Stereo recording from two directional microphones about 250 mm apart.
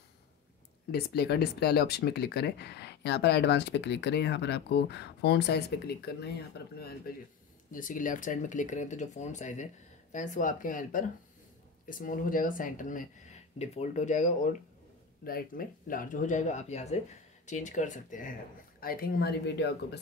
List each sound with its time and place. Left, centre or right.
0.9 s speech: left